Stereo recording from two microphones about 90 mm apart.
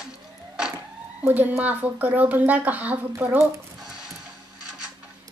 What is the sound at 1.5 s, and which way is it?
A woman's voice, 15° right (ahead or behind).